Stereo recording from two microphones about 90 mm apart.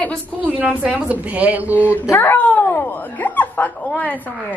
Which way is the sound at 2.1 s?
25° left (ahead or behind).